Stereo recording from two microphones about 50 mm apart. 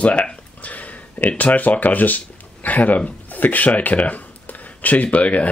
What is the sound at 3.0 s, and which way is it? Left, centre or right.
Speech, left.